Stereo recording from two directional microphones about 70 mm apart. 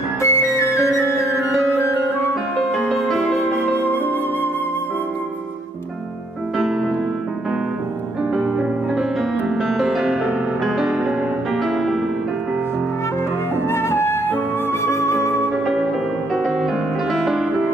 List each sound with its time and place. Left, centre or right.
0.2 s music: left
2.7 s music: centre
3.7 s music: left
9.6 s music: centre
13.7 s flute: left
14.9 s music: left
17.1 s music: centre